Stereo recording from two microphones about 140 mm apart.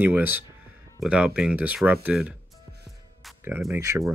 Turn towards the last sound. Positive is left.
turn(degrees=-20)  # may be behind; listen again after turning